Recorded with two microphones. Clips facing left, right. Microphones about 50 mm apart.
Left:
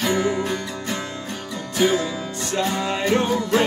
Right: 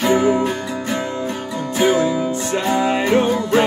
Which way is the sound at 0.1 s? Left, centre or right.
Centre.